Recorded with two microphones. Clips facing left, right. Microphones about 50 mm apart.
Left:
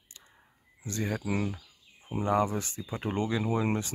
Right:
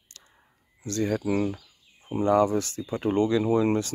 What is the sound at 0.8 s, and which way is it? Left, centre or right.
Speech, centre.